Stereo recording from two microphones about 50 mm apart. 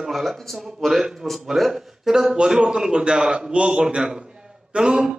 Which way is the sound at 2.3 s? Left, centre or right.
Centre.